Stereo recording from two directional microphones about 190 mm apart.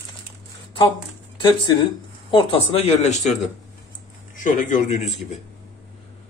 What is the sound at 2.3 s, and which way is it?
Speech, 30° left (ahead or behind).